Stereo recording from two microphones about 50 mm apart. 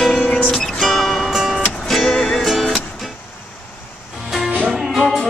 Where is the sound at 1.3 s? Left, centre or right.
Centre.